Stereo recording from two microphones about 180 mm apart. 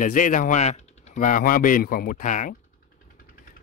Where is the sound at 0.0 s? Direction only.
45° left (ahead or behind).